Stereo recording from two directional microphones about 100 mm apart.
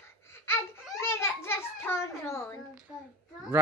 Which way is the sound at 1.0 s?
25° left (ahead or behind).